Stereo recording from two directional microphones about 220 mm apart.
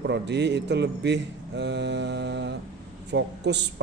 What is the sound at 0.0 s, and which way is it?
Speech, 50° right (ahead or behind).